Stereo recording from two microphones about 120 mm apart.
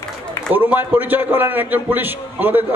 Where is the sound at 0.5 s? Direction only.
15° right (ahead or behind).